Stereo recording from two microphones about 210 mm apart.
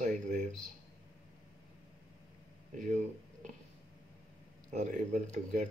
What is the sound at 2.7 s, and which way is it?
Speech, 35° right (ahead or behind).